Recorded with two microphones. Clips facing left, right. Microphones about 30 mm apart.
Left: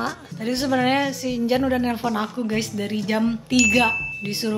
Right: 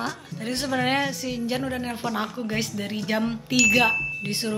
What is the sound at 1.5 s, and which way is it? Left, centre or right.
Speech, centre.